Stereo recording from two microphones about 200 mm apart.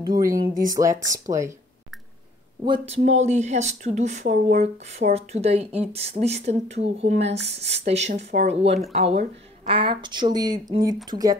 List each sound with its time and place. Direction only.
0.0 s speech: 20° right (ahead or behind)
2.6 s speech: 25° right (ahead or behind)